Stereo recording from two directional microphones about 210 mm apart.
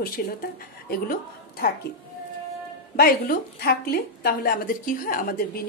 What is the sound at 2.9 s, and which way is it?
A woman's voice, 45° left (ahead or behind).